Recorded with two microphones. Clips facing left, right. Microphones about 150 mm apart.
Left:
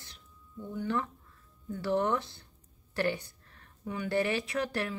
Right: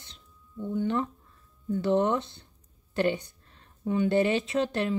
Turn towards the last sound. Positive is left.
turn(degrees=-25)  # may be behind; listen again after turning